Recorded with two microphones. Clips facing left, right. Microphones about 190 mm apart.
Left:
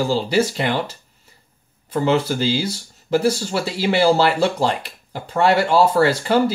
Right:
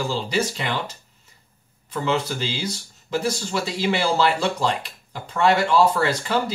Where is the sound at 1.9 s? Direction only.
35° left (ahead or behind).